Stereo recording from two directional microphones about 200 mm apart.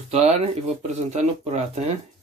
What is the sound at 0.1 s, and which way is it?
Speech, 35° right (ahead or behind).